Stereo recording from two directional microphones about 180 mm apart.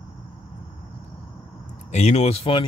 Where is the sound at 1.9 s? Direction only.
35° left (ahead or behind).